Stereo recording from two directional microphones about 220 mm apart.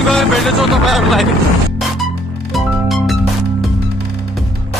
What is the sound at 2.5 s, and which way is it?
Music, centre (ahead or behind).